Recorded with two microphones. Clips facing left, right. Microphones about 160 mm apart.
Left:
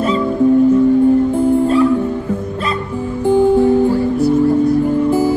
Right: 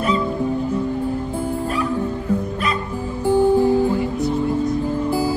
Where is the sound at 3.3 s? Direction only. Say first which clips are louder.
Left 4 dB; 20° left (ahead or behind).